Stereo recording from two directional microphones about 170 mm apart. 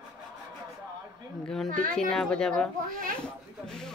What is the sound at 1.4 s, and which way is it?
Speech, 5° left (ahead or behind).